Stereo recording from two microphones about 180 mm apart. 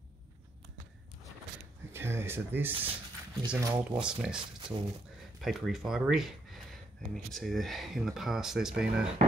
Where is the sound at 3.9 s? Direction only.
5° right (ahead or behind).